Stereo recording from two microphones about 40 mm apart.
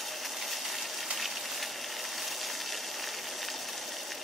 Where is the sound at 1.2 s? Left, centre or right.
Centre.